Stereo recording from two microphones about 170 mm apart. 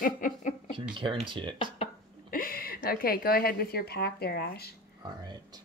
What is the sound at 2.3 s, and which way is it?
A woman's voice, 55° left (ahead or behind).